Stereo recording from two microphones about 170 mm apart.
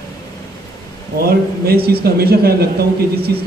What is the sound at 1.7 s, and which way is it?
Speech, 65° right (ahead or behind).